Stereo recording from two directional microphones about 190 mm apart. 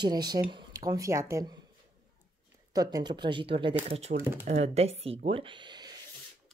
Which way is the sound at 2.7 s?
20° right (ahead or behind).